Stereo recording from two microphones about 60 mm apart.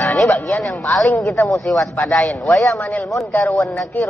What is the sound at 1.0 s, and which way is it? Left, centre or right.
Speech, left.